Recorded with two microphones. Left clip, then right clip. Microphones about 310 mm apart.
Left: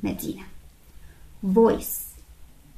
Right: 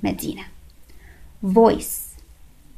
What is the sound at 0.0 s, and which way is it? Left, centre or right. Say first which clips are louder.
Speech: right 5 dB; right.